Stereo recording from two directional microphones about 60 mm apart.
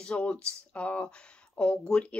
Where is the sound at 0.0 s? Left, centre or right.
Centre.